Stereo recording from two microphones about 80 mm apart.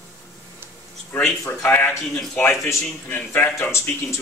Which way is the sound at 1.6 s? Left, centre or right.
Left.